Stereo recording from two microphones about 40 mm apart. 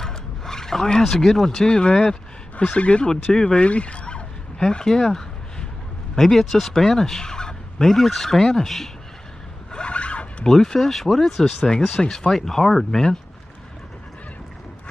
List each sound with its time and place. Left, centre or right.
0.0 s speech: centre
3.3 s speech: centre
3.6 s fowl: left
4.6 s a sound: centre
6.1 s speech: centre
7.8 s speech: centre
9.7 s zipper: left
10.4 s speech: centre
11.6 s speech: centre